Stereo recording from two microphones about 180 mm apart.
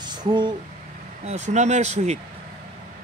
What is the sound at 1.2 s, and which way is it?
Speech, 40° right (ahead or behind).